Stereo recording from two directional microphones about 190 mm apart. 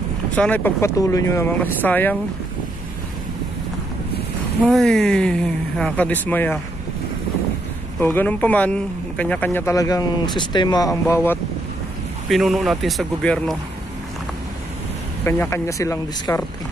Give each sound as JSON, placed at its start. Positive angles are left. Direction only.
{"t": 0.4, "sound": "speech", "side_deg": 10}
{"t": 4.6, "sound": "speech", "side_deg": 0}
{"t": 8.0, "sound": "speech", "side_deg": 10}
{"t": 12.3, "sound": "speech", "side_deg": 0}
{"t": 15.2, "sound": "speech", "side_deg": 10}